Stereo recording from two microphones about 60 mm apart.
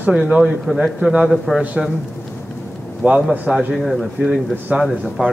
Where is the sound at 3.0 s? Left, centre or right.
Right.